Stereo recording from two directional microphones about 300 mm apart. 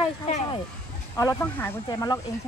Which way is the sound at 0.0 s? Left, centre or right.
Centre.